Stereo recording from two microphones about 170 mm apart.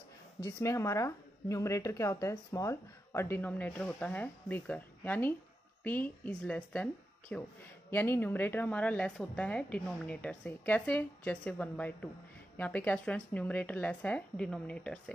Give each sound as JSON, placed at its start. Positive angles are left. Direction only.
{"t": 0.4, "sound": "a woman's voice", "side_deg": 15}